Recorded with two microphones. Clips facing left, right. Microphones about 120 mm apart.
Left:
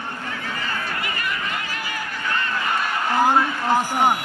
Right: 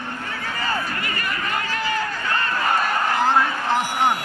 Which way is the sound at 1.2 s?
40° right (ahead or behind).